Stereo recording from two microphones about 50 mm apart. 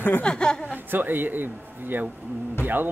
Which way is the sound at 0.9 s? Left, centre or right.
Right.